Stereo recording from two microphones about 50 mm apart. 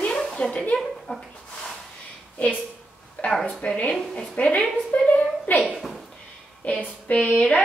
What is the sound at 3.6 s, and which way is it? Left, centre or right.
Speech, left.